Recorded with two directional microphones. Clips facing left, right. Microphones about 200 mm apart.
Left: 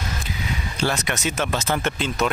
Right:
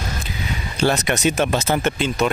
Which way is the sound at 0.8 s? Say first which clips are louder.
Right 6 dB; 20° right (ahead or behind).